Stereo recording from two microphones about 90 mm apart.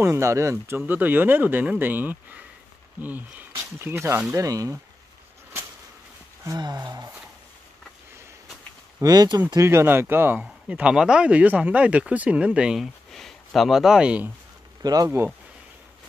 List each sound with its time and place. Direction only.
0.0 s speech: 30° right (ahead or behind)
6.6 s speech: 50° right (ahead or behind)
9.0 s speech: 45° right (ahead or behind)
9.6 s speech: 30° right (ahead or behind)
10.3 s speech: 15° right (ahead or behind)
14.8 s speech: 45° right (ahead or behind)